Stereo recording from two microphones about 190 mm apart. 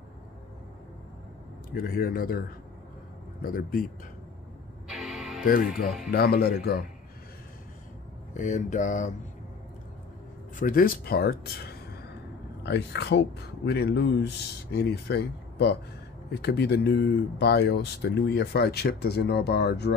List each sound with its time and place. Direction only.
1.7 s speech: 50° left (ahead or behind)
3.4 s speech: 50° left (ahead or behind)
4.8 s music: 5° right (ahead or behind)
5.4 s speech: 45° left (ahead or behind)
8.4 s mantra: 40° left (ahead or behind)
10.5 s speech: 45° left (ahead or behind)
12.6 s speech: 65° left (ahead or behind)